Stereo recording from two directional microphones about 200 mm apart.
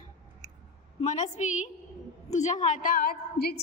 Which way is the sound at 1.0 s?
35° left (ahead or behind).